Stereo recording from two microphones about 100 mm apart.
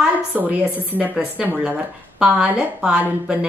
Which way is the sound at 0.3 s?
15° right (ahead or behind).